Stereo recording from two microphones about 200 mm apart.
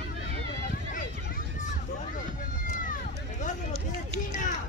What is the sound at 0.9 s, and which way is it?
Run, 40° left (ahead or behind).